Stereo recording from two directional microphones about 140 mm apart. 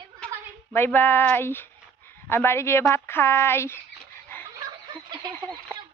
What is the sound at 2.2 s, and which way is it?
Speech, 15° left (ahead or behind).